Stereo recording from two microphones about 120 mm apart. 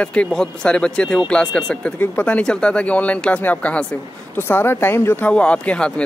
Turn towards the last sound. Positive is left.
turn(degrees=10)  # may be behind; listen again after turning